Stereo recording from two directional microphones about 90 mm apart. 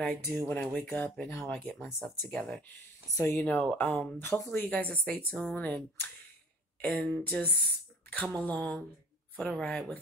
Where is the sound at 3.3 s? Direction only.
20° left (ahead or behind).